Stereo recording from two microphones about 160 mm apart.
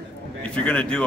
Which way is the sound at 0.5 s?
10° left (ahead or behind).